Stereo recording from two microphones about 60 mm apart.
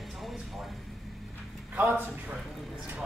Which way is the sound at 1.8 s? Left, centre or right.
Right.